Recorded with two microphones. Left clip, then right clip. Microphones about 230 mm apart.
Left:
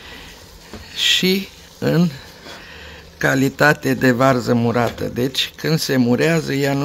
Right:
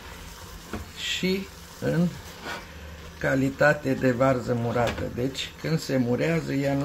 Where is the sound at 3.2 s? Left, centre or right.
Left.